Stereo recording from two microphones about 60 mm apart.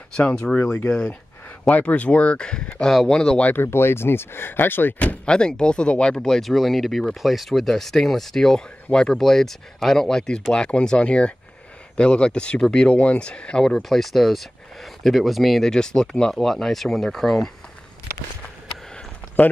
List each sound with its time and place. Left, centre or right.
0.1 s speech: centre
2.9 s speech: centre
3.2 s speech: centre
3.6 s speech: left; by 13.7 s centre
13.8 s speech: centre